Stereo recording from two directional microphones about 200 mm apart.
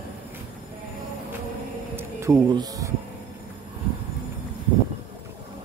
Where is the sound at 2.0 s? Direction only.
15° right (ahead or behind).